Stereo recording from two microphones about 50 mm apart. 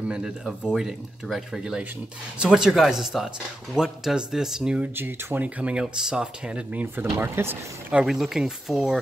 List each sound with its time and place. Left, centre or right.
0.7 s speech: centre
4.9 s speech: right
5.6 s speech: right
5.9 s speech: centre
6.7 s speech: right
7.2 s speech: right
8.0 s speech: centre